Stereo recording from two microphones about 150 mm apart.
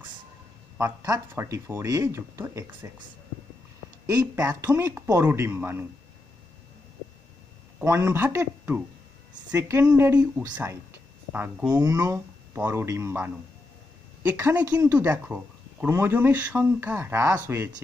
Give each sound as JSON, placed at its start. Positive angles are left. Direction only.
{"t": 0.7, "sound": "speech", "side_deg": -20}
{"t": 4.1, "sound": "speech", "side_deg": -25}
{"t": 7.8, "sound": "speech", "side_deg": -15}